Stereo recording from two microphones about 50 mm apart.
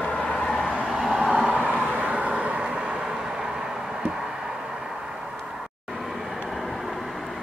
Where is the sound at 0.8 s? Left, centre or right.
Centre.